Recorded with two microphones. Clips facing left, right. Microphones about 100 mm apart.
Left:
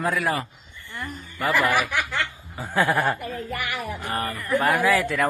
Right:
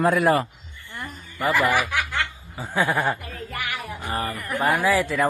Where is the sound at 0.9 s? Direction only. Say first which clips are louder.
Left 2 dB; 5° right (ahead or behind).